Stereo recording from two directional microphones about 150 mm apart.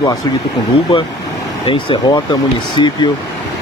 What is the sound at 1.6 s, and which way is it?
Speech, 35° left (ahead or behind).